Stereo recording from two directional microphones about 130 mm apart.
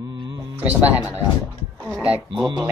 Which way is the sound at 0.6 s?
15° right (ahead or behind).